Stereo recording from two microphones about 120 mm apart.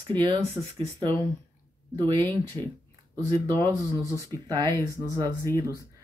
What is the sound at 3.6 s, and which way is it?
Speech, 25° right (ahead or behind).